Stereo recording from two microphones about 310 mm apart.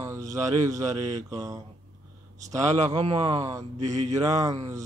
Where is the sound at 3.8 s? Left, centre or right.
Right.